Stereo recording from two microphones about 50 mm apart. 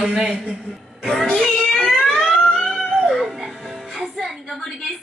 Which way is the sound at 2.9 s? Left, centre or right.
Centre.